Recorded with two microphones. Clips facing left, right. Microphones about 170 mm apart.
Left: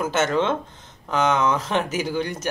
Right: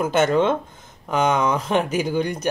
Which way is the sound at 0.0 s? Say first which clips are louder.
Right 3 dB; 15° right (ahead or behind).